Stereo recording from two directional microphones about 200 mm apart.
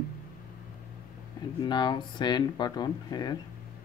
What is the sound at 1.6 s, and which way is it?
Speech, 20° left (ahead or behind).